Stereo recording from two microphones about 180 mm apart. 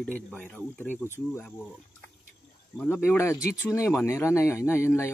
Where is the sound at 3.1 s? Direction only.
15° left (ahead or behind).